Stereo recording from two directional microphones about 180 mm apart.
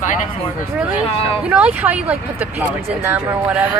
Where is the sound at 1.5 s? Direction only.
10° right (ahead or behind).